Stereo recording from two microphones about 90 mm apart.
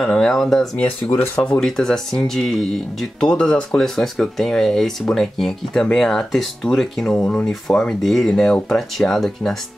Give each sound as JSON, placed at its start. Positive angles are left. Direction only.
{"t": 0.0, "sound": "speech", "side_deg": 5}
{"t": 0.7, "sound": "speech", "side_deg": 15}
{"t": 3.8, "sound": "speech", "side_deg": 5}